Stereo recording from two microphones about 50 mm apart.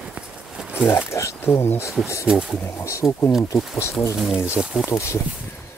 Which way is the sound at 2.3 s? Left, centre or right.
Centre.